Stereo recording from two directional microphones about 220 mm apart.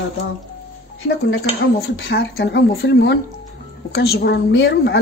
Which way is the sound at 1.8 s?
50° left (ahead or behind).